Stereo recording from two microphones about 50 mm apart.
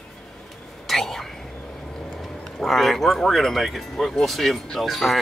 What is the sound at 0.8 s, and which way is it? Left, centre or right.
Whispering, centre.